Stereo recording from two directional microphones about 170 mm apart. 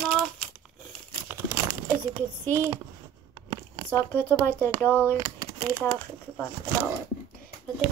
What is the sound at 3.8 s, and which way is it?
Speech, 10° left (ahead or behind).